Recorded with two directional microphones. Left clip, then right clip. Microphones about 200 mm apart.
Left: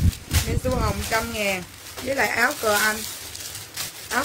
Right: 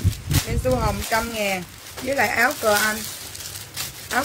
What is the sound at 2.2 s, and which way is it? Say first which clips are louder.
Speech: right 2 dB; 10° left (ahead or behind).